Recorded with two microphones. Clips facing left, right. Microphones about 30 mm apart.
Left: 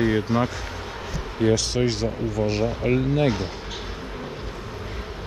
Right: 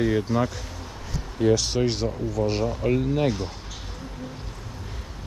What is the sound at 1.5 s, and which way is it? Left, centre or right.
Speech, centre.